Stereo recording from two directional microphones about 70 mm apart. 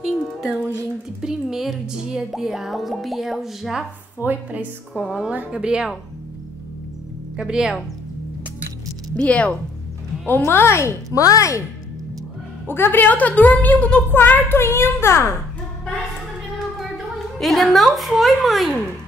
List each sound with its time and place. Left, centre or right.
0.0 s music: centre
1.2 s speech: centre
4.2 s a woman's voice: right
4.9 s speech: centre
7.3 s speech: centre
9.1 s a woman's voice: centre
10.2 s a child's voice: left
11.1 s speech: left
12.6 s a woman's voice: left
14.1 s a child's voice: left
16.7 s a woman's voice: centre